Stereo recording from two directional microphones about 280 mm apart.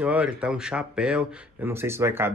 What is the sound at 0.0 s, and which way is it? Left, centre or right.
Speech, centre.